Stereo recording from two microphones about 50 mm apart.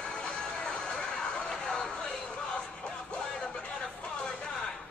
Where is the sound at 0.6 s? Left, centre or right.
Centre.